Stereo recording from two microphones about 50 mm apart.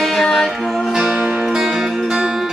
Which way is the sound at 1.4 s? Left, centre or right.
Centre.